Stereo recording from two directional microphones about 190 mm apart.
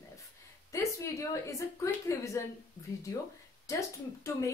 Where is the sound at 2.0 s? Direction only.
15° left (ahead or behind).